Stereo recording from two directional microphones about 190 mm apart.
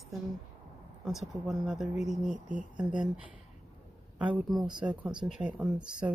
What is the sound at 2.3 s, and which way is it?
Speech, 45° right (ahead or behind).